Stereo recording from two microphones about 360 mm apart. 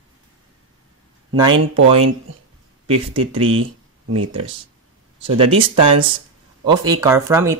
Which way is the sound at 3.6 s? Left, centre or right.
Right.